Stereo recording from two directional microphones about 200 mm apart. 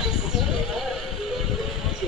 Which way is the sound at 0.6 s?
Centre (ahead or behind).